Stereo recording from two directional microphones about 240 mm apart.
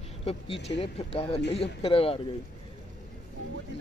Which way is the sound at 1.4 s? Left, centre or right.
Left.